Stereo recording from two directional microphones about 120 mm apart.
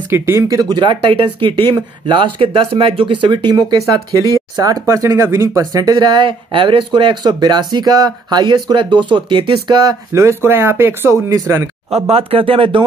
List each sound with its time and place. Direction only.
0.1 s speech: 25° right (ahead or behind); by 9.8 s 45° right (ahead or behind)
9.8 s speech: 25° right (ahead or behind)
11.9 s speech: 55° right (ahead or behind)